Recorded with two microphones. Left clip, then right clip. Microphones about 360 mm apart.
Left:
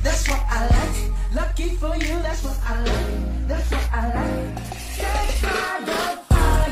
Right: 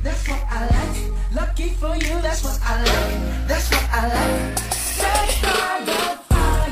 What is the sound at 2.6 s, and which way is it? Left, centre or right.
Music, right.